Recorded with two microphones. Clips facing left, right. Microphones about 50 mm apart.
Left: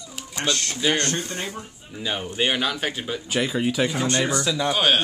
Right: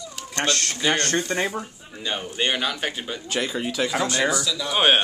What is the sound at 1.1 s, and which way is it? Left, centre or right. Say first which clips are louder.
Speech: right 6 dB; right.